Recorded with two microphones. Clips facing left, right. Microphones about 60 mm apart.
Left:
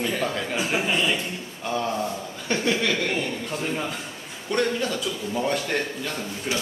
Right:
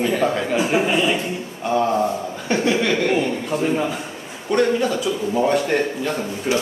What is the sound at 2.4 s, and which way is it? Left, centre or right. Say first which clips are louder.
Speech: right 4 dB; centre.